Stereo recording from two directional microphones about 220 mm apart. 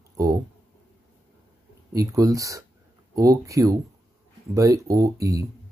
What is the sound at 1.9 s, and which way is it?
Speech, 15° right (ahead or behind).